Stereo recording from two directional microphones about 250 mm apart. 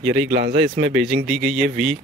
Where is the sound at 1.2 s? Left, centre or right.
Centre.